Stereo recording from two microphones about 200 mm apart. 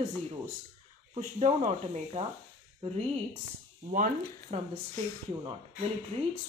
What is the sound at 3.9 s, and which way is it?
Speech, 40° right (ahead or behind).